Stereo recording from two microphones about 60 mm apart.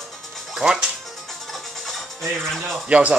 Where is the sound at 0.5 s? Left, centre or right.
Centre.